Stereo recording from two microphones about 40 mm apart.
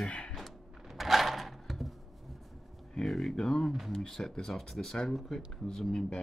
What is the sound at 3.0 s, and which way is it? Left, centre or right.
Speech, centre.